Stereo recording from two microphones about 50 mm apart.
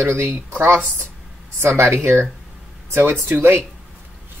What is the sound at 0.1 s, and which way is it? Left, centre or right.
Speech, right.